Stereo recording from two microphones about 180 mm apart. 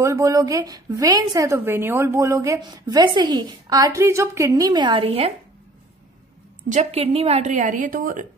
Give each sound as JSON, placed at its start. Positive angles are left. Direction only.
{"t": 0.0, "sound": "a woman's voice", "side_deg": -20}
{"t": 6.7, "sound": "a woman's voice", "side_deg": -35}